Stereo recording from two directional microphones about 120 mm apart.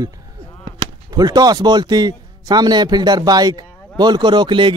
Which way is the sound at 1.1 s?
35° right (ahead or behind).